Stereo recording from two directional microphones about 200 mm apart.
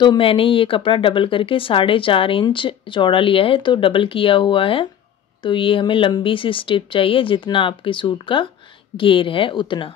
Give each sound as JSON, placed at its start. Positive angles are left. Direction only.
{"t": 0.0, "sound": "speech", "side_deg": 25}